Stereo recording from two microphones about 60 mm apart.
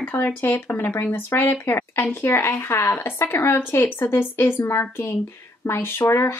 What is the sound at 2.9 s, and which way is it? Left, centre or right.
Speech, left.